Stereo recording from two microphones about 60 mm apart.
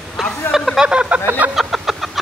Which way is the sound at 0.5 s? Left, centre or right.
Centre.